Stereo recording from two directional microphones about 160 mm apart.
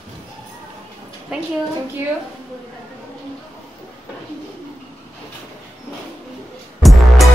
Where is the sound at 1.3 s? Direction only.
5° right (ahead or behind).